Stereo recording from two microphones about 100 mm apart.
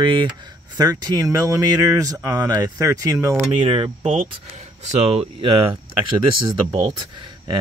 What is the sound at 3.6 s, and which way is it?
Speech, 70° right (ahead or behind).